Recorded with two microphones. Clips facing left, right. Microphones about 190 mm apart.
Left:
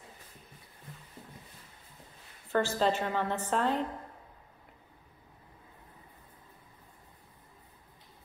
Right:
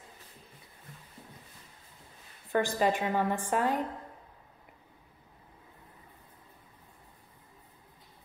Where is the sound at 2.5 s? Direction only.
15° right (ahead or behind).